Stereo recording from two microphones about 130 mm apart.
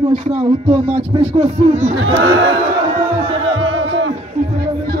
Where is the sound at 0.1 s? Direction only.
45° right (ahead or behind).